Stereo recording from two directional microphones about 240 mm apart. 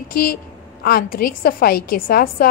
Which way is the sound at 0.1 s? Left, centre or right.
Left.